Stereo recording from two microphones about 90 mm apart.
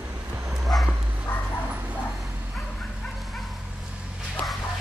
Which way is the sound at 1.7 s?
15° right (ahead or behind).